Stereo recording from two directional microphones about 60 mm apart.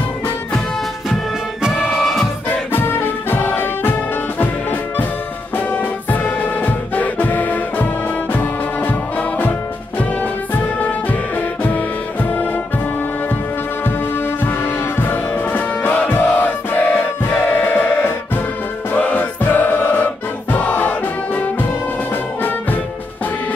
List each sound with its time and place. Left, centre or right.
1.6 s music: centre
2.7 s music: left
10.5 s music: left
13.8 s music: left